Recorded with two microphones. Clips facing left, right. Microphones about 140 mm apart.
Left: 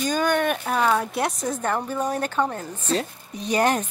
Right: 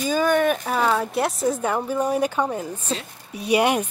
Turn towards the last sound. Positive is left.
turn(degrees=-10)  # may be behind; listen again after turning